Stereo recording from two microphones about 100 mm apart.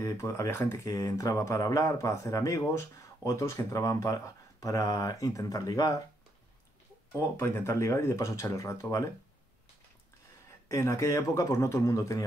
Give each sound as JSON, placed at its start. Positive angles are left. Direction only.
{"t": 0.0, "sound": "speech", "side_deg": 30}
{"t": 7.2, "sound": "speech", "side_deg": 25}
{"t": 10.7, "sound": "speech", "side_deg": 30}